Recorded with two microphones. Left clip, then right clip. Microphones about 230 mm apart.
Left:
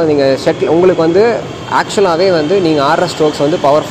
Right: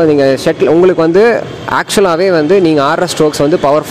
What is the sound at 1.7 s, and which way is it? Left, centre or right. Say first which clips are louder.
Speech: right 1 dB; right.